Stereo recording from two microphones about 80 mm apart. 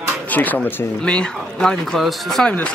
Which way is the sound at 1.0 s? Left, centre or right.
Centre.